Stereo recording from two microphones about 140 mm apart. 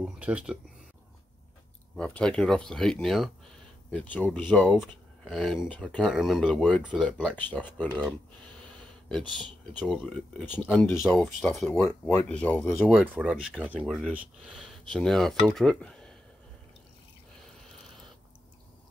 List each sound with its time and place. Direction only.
0.0 s speech: 10° right (ahead or behind)
2.0 s speech: 10° left (ahead or behind)
4.7 s speech: centre (ahead or behind)
6.8 s speech: 10° right (ahead or behind)
7.1 s speech: 10° left (ahead or behind)
9.8 s speech: 10° left (ahead or behind)
12.7 s speech: 10° right (ahead or behind)